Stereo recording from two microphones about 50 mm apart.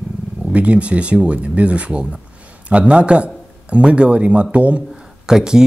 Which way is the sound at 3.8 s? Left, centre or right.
Right.